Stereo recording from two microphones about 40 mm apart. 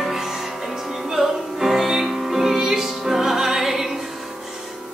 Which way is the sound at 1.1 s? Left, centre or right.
Centre.